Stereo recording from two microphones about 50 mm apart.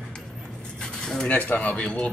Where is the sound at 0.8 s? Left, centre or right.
Centre.